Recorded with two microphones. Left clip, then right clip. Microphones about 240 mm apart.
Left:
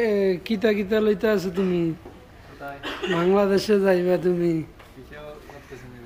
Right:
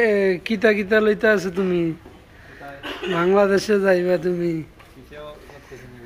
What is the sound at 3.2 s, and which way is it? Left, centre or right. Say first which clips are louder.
A man's voice: right 4 dB; centre.